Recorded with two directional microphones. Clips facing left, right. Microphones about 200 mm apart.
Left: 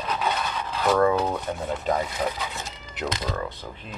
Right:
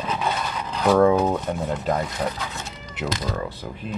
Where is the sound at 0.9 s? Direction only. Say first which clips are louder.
Right 4 dB; 5° right (ahead or behind).